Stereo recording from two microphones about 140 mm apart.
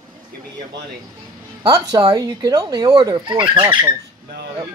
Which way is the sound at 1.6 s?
25° right (ahead or behind).